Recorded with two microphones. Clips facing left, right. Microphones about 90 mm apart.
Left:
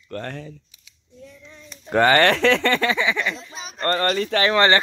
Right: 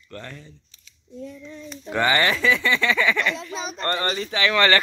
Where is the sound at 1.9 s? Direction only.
50° left (ahead or behind); by 2.8 s 65° left (ahead or behind).